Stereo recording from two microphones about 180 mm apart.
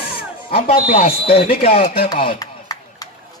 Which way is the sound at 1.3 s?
35° left (ahead or behind).